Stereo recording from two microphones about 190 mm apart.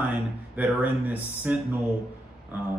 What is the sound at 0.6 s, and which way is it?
Speech, 10° right (ahead or behind).